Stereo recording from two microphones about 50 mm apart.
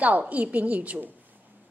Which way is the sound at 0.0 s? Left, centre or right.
Right.